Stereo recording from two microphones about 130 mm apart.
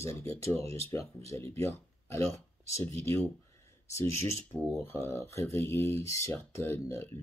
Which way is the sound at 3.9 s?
15° left (ahead or behind).